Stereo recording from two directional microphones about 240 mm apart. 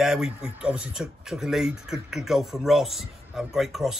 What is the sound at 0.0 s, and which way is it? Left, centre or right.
Speech, centre.